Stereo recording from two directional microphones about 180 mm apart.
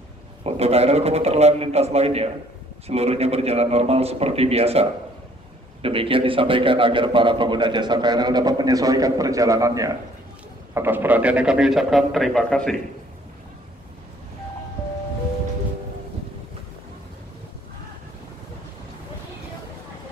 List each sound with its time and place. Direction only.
0.4 s a man's voice: 35° right (ahead or behind); by 12.7 s 5° left (ahead or behind)